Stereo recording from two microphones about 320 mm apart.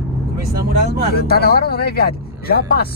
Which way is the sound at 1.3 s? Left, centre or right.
Left.